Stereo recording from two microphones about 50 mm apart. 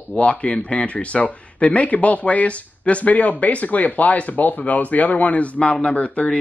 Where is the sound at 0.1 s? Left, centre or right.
Left.